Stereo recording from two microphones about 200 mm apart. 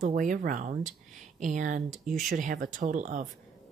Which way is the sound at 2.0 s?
Centre (ahead or behind).